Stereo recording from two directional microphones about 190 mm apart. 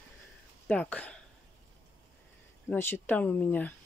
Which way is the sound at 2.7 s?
10° left (ahead or behind).